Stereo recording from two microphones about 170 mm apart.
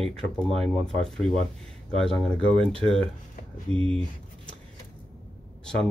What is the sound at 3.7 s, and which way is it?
Speech, 40° right (ahead or behind).